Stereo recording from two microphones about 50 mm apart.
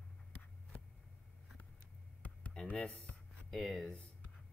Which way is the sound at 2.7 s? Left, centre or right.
Left.